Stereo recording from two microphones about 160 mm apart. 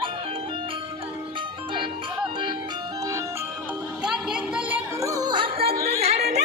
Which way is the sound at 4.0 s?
5° right (ahead or behind).